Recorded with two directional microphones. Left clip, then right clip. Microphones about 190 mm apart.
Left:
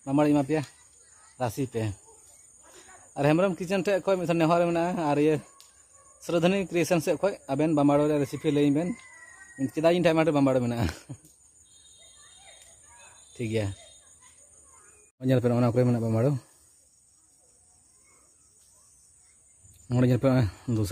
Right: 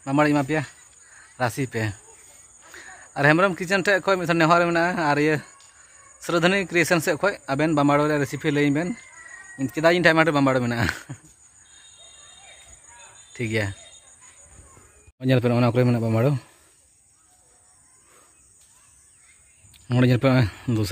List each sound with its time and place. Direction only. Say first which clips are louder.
0.0 s speech: right 3 dB; 5° right (ahead or behind)
13.3 s speech: right 4 dB; centre (ahead or behind)
15.1 s speech: right 4 dB; 5° right (ahead or behind)
19.7 s speech: right 4 dB; centre (ahead or behind)